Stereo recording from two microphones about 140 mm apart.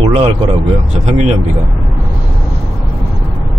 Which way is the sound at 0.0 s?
45° right (ahead or behind).